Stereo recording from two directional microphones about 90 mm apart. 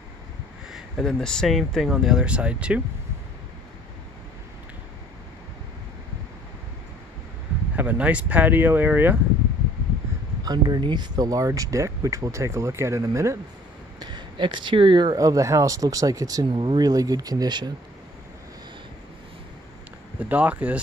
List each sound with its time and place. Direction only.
0.7 s speech: centre (ahead or behind)
7.7 s speech: 15° right (ahead or behind)
10.4 s speech: 50° right (ahead or behind); by 13.4 s 35° right (ahead or behind)
13.9 s speech: 55° right (ahead or behind)
15.1 s speech: 40° right (ahead or behind)
16.4 s speech: 70° right (ahead or behind)
16.8 s speech: 45° right (ahead or behind)
20.2 s speech: 15° right (ahead or behind)